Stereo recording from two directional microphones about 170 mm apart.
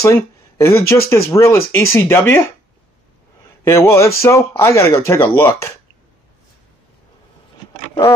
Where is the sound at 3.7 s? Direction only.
15° left (ahead or behind).